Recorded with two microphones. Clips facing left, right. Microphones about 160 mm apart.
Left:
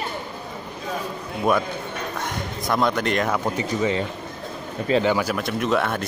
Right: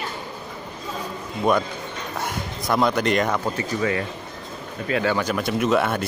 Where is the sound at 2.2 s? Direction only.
Centre (ahead or behind).